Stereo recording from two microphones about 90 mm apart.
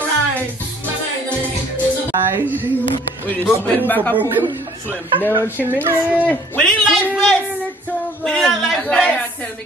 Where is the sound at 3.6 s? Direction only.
20° left (ahead or behind).